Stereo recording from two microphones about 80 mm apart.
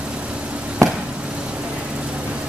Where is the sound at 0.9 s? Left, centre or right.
Centre.